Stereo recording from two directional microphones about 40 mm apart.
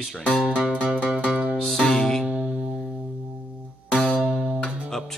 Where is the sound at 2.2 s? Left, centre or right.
Right.